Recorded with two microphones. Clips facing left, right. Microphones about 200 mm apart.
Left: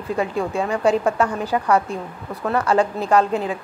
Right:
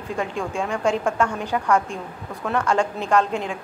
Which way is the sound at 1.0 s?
5° left (ahead or behind).